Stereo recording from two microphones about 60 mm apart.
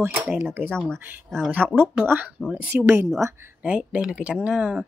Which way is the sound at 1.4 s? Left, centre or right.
Right.